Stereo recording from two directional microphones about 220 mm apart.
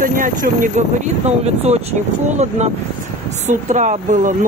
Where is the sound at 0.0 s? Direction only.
35° right (ahead or behind).